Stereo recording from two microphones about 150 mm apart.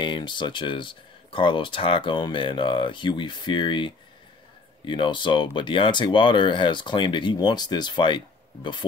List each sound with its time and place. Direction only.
0.0 s speech: 30° left (ahead or behind)